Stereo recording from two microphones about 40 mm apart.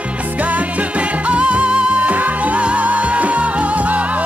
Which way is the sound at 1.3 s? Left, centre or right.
Right.